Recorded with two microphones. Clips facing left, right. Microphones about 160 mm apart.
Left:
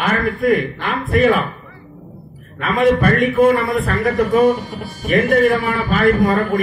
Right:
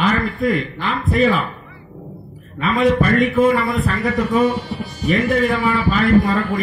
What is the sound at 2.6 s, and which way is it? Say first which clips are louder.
Speech: left 1 dB; 55° left (ahead or behind).